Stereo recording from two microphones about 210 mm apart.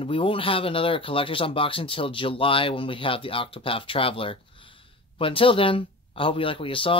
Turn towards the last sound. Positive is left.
turn(degrees=25)  # may be behind; listen again after turning